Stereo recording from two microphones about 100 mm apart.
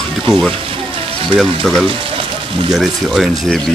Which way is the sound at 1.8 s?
65° right (ahead or behind).